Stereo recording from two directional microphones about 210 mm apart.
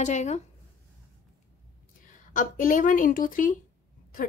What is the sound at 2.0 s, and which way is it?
A woman's voice, 40° left (ahead or behind).